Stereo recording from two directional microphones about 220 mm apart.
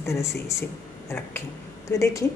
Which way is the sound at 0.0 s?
15° left (ahead or behind).